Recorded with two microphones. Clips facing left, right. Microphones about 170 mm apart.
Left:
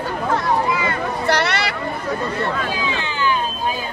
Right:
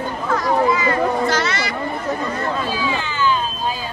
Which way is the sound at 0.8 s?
65° left (ahead or behind).